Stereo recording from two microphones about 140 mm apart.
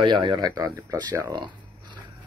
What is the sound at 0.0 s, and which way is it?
Speech, 35° right (ahead or behind).